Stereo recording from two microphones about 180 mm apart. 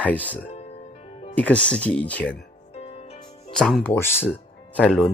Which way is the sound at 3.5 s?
5° left (ahead or behind).